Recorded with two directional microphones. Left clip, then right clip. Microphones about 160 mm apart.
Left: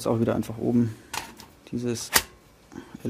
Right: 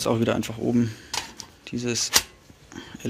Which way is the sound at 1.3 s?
20° left (ahead or behind).